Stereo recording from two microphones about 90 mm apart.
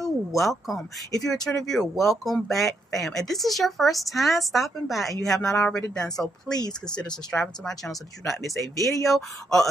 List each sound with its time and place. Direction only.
0.4 s a woman's voice: centre (ahead or behind)
8.5 s speech: 40° left (ahead or behind)
9.0 s a woman's voice: centre (ahead or behind)